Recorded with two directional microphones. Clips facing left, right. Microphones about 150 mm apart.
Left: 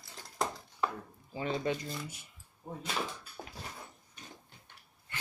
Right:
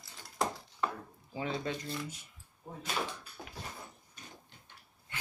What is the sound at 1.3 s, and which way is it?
Speech, 5° right (ahead or behind).